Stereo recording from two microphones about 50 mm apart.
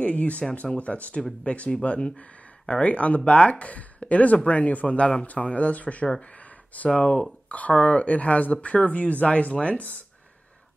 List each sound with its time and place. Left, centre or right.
0.0 s speech: left